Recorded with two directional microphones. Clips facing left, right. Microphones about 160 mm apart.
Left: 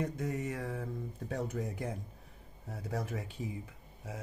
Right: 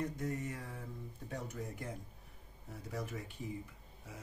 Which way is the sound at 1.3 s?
90° left.